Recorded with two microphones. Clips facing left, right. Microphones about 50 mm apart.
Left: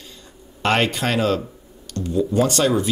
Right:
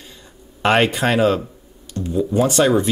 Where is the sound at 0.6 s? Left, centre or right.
Centre.